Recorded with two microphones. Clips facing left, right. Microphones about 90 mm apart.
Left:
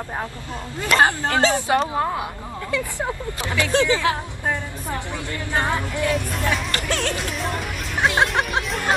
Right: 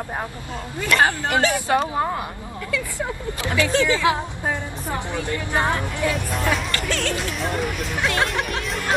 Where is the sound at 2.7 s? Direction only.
20° left (ahead or behind).